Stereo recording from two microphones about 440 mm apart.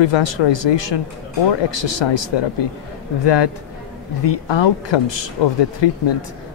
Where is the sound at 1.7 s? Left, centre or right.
Left.